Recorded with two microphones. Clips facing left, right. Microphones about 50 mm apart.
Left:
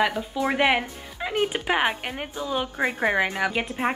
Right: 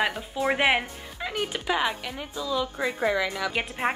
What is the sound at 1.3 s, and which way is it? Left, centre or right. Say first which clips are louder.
A woman's voice: left 4 dB; left.